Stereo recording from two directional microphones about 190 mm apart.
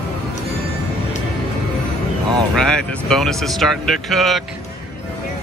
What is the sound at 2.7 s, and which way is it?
Speech, 5° left (ahead or behind).